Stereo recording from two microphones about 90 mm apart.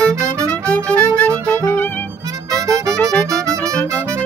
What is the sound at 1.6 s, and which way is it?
Music, 25° left (ahead or behind).